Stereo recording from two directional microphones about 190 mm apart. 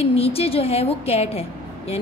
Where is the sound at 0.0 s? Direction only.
30° left (ahead or behind).